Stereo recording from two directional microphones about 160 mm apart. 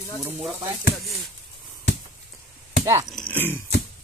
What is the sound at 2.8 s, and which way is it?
Speech, 20° right (ahead or behind).